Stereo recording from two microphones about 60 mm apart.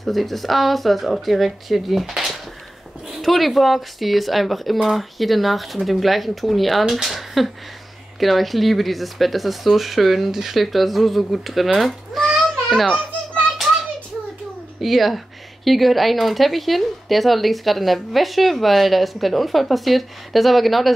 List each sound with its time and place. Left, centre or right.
0.0 s speech: centre
14.8 s speech: centre